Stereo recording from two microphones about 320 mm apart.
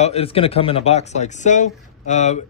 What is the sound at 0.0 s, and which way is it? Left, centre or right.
Speech, centre.